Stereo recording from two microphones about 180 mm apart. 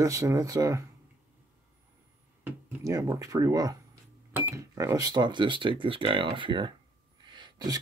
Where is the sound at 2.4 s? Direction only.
15° right (ahead or behind).